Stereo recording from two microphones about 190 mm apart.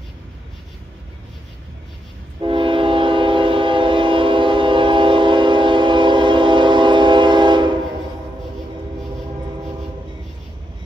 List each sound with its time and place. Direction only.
2.4 s train: 25° right (ahead or behind)